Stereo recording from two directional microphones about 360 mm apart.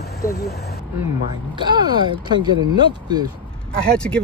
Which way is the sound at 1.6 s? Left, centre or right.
Centre.